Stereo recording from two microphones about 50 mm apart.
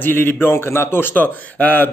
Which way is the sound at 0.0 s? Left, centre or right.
Left.